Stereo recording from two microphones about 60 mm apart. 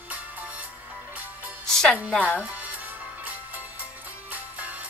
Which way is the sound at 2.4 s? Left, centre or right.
Right.